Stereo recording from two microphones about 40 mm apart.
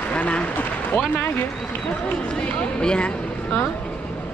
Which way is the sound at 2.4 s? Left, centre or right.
Left.